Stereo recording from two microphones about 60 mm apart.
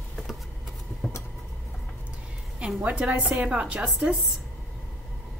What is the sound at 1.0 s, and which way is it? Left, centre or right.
Vehicle, centre.